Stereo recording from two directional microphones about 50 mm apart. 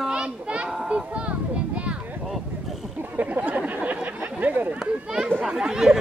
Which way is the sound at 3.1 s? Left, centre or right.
Right.